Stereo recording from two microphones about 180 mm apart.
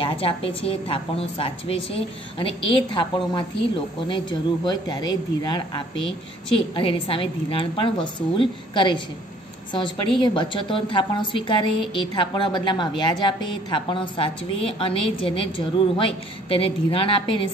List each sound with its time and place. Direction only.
0.0 s a woman's voice: 30° left (ahead or behind)